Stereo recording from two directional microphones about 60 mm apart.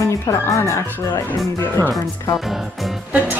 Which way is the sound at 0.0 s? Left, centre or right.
Left.